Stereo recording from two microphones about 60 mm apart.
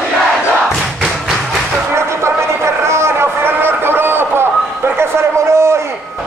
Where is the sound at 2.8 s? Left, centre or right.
Right.